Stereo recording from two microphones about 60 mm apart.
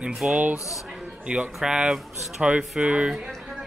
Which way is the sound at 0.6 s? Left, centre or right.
Left.